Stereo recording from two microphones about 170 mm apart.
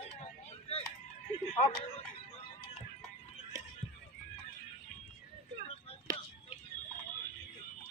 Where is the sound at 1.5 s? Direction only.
30° left (ahead or behind).